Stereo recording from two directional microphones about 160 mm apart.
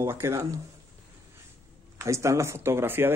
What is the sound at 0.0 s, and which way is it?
Speech, 15° right (ahead or behind).